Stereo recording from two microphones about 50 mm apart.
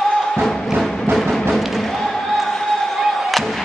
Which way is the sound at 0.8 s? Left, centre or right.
Centre.